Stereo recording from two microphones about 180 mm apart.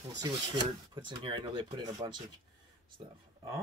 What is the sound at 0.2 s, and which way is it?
Speech, 25° right (ahead or behind).